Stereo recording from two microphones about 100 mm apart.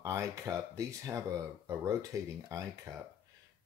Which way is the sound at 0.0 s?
30° right (ahead or behind).